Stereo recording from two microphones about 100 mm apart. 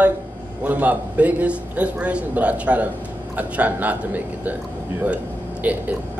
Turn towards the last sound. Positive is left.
turn(degrees=-15)  # may be behind; listen again after turning